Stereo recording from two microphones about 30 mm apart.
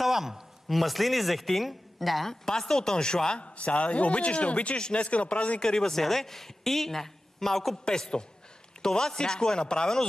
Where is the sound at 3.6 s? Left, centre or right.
Left.